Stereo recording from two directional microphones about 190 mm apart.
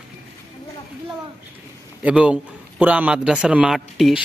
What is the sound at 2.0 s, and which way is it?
A man's voice, 5° right (ahead or behind).